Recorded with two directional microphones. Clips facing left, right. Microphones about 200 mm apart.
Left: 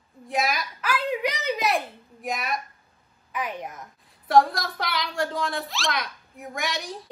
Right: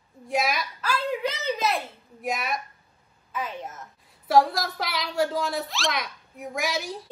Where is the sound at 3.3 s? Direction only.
15° left (ahead or behind).